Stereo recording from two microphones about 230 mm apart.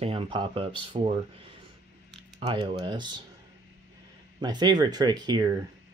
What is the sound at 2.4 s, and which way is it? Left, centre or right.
Speech, right.